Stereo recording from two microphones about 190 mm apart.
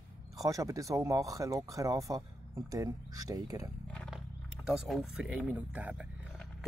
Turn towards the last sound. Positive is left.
turn(degrees=-5)  # may be behind; listen again after turning